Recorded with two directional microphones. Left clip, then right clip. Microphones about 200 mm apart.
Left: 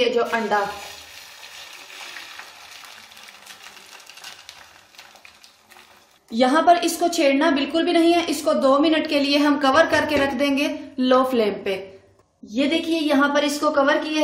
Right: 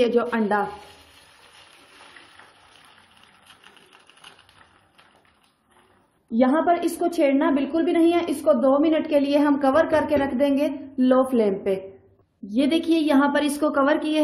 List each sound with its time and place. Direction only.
0.0 s a woman's voice: 50° right (ahead or behind)
6.3 s a woman's voice: 25° right (ahead or behind)
12.5 s a woman's voice: 50° right (ahead or behind)